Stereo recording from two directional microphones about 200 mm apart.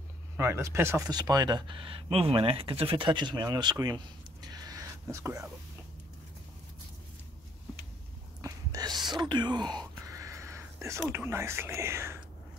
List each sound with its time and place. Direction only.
0.4 s speech: 15° right (ahead or behind)
8.4 s speech: 15° right (ahead or behind)
10.2 s a sound: 15° right (ahead or behind)
11.1 s speech: 10° right (ahead or behind)